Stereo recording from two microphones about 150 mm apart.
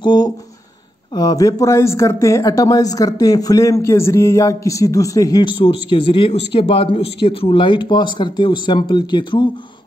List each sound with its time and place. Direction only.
0.0 s speech: 30° left (ahead or behind)